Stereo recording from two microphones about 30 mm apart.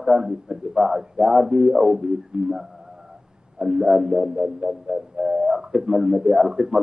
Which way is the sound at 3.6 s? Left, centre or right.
Right.